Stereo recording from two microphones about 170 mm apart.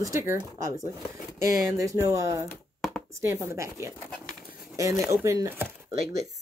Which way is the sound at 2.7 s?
Centre (ahead or behind).